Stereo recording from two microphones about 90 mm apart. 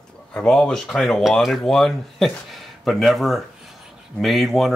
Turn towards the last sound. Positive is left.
turn(degrees=0)  # may be behind; listen again after turning